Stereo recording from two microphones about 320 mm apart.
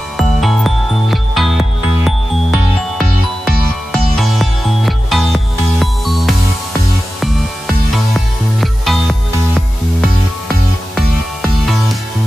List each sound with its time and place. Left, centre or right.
0.2 s music: centre